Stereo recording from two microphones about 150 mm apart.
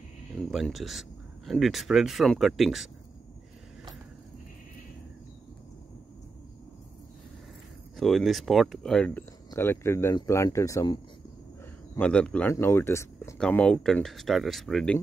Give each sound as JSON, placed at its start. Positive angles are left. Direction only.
{"t": 0.5, "sound": "speech", "side_deg": 0}
{"t": 8.0, "sound": "speech", "side_deg": 0}
{"t": 9.5, "sound": "speech", "side_deg": 15}
{"t": 11.9, "sound": "speech", "side_deg": 10}
{"t": 13.4, "sound": "speech", "side_deg": 5}